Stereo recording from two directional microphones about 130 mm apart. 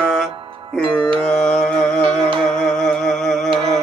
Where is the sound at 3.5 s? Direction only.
50° right (ahead or behind).